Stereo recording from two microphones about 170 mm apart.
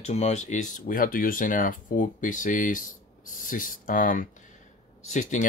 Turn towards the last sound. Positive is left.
turn(degrees=45)  # may be behind; listen again after turning